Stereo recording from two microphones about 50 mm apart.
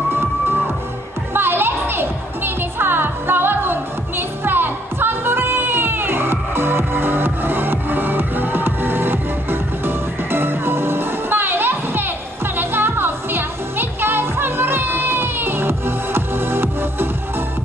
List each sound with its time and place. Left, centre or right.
1.3 s music: right